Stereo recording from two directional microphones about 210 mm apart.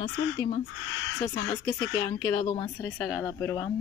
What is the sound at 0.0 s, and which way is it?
Speech, 25° left (ahead or behind).